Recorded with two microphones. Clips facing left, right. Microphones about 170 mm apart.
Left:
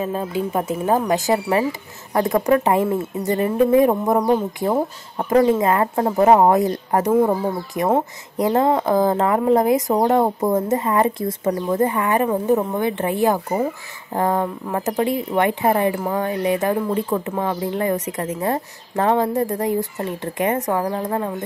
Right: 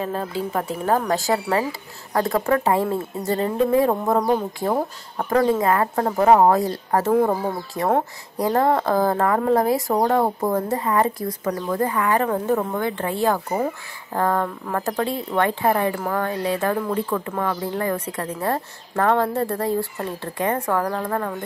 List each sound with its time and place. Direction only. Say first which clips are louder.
0.0 s speech: left 3 dB; 15° left (ahead or behind)
7.1 s speech: left 2 dB; centre (ahead or behind)
7.8 s speech: left 2 dB; 15° left (ahead or behind)